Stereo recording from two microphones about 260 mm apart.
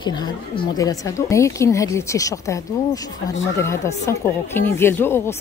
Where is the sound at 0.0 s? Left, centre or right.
Centre.